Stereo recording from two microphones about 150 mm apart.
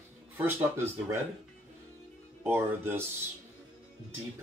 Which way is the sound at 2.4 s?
15° right (ahead or behind).